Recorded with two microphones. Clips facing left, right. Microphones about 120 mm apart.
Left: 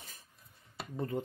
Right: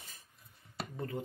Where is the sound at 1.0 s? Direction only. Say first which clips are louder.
Left 4 dB; 30° left (ahead or behind).